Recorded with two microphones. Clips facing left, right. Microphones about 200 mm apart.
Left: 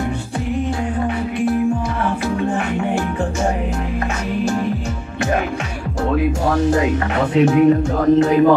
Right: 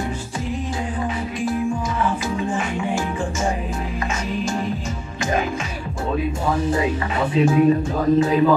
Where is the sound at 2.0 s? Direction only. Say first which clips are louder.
Left 3 dB; 65° left (ahead or behind).